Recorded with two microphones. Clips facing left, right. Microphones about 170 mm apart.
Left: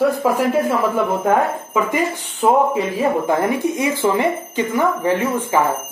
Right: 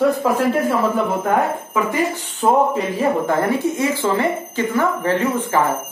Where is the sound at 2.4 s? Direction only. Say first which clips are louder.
Left 1 dB; 10° left (ahead or behind).